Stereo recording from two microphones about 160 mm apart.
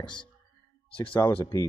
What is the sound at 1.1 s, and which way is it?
Speech, 10° left (ahead or behind).